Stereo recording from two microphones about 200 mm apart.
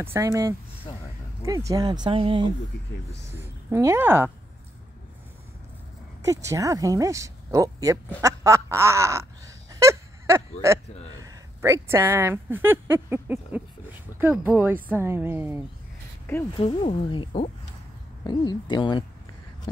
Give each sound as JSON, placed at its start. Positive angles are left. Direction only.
{"t": 0.0, "sound": "speech", "side_deg": -15}
{"t": 3.7, "sound": "speech", "side_deg": -15}
{"t": 6.2, "sound": "speech", "side_deg": -15}
{"t": 9.8, "sound": "a sound", "side_deg": -15}
{"t": 10.6, "sound": "speech", "side_deg": -15}
{"t": 16.5, "sound": "speech", "side_deg": 30}